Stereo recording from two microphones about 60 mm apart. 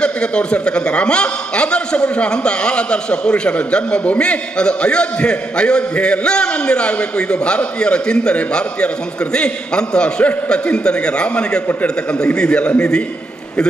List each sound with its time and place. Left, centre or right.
0.0 s a man's voice: centre